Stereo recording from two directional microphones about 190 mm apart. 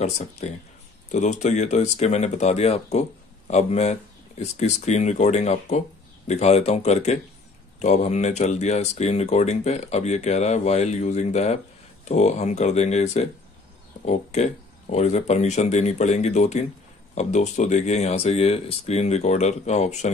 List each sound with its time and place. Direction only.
0.0 s speech: 35° left (ahead or behind)